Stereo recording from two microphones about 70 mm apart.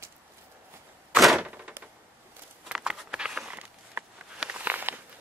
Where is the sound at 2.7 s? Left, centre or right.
Centre.